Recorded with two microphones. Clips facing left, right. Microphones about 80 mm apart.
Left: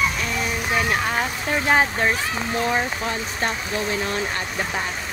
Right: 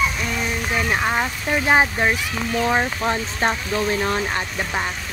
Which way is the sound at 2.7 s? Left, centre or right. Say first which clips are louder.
Right 3 dB; right.